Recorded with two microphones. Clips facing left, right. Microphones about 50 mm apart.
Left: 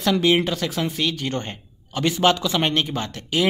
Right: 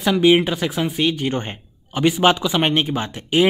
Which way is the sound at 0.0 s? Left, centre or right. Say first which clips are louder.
Right 4 dB; centre.